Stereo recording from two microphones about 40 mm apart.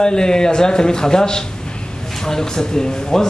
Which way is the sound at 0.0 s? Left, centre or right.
Centre.